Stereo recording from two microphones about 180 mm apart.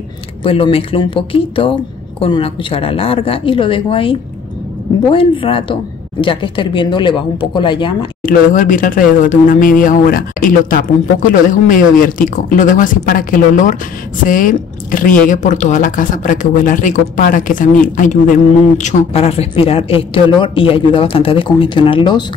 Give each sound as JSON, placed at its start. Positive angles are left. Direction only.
{"t": 0.4, "sound": "a woman's voice", "side_deg": 30}
{"t": 8.2, "sound": "a woman's voice", "side_deg": 50}